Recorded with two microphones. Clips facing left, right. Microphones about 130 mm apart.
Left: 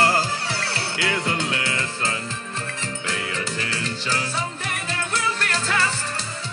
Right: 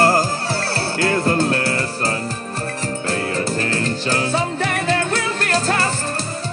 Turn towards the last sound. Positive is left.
turn(degrees=-40)  # may be behind; listen again after turning